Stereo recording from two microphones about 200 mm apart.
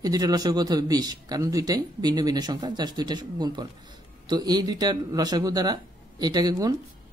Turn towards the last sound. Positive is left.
turn(degrees=-20)  # may be behind; listen again after turning